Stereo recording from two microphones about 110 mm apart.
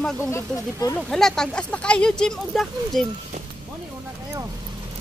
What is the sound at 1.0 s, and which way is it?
Speech, 5° left (ahead or behind).